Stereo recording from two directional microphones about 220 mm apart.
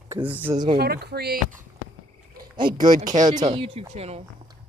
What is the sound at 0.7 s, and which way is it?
Speech, 45° right (ahead or behind).